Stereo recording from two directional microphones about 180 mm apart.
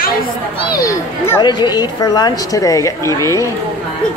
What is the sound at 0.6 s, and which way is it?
A woman's voice, 20° left (ahead or behind).